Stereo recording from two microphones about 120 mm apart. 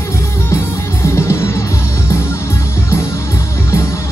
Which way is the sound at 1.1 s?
25° left (ahead or behind).